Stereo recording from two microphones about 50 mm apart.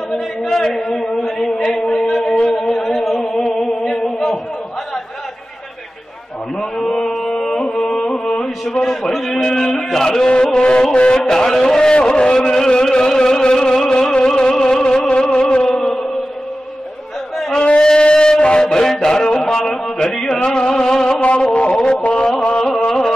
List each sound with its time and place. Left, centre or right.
0.4 s a sound: centre
3.3 s singing: centre
6.8 s chant: centre
7.1 s carnatic music: centre
9.3 s a sound: centre
15.0 s music: centre
15.8 s chant: centre
17.5 s a sound: centre
20.3 s music: centre
21.2 s music: left